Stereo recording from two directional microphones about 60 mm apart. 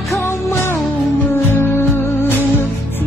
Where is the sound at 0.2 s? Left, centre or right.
Left.